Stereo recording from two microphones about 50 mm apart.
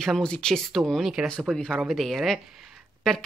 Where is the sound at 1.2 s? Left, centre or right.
Right.